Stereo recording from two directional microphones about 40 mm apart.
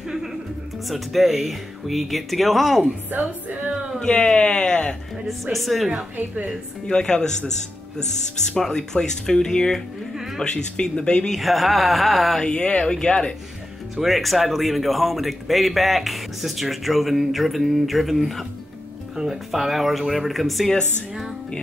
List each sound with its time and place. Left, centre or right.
0.8 s speech: centre
3.2 s music: right
4.0 s speech: left
5.4 s speech: centre
6.1 s music: right
6.9 s speech: centre
10.1 s a sound: centre
10.4 s speech: left
11.3 s speech: centre
12.4 s speech: left
14.0 s speech: centre